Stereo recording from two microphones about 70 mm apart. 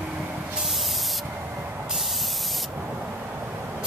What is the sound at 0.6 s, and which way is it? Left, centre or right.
Spray, centre.